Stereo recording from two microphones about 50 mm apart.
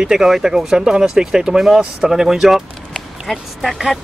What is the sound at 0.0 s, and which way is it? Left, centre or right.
Speech, centre.